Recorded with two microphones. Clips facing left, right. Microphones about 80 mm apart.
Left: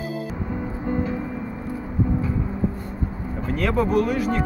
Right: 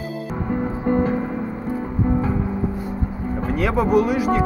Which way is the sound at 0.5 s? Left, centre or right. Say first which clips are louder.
Right 8 dB; right.